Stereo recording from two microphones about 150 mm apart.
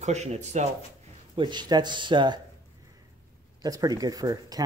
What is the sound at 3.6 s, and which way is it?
Speech, 25° right (ahead or behind).